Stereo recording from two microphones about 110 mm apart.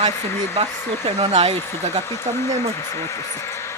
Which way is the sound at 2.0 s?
25° left (ahead or behind).